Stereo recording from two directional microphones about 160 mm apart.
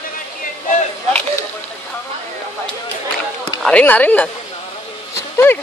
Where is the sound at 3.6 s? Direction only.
10° left (ahead or behind).